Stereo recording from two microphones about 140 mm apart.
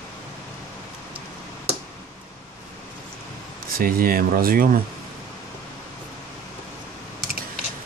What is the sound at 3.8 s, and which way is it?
Speech, 90° right.